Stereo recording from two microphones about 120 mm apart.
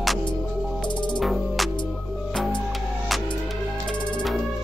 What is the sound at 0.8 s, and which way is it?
Music, 40° left (ahead or behind).